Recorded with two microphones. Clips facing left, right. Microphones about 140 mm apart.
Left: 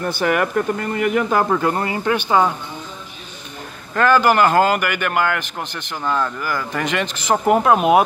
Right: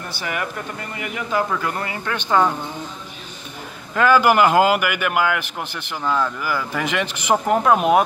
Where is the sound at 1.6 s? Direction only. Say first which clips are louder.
Left 6 dB; 30° left (ahead or behind).